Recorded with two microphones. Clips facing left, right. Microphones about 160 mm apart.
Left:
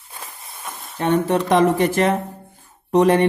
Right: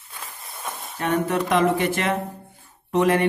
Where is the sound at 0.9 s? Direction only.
30° left (ahead or behind).